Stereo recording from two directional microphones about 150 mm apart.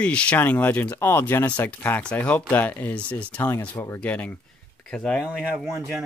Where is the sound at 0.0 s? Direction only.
10° left (ahead or behind).